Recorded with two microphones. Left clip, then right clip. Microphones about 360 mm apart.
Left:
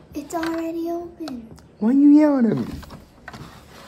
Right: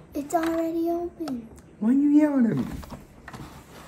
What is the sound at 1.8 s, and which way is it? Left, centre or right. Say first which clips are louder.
Speech: left 6 dB; centre.